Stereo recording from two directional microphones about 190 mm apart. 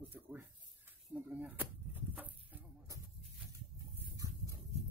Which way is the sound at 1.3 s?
10° right (ahead or behind).